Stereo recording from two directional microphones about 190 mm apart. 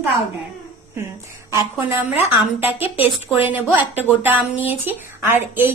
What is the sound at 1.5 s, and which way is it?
Speech, 15° right (ahead or behind).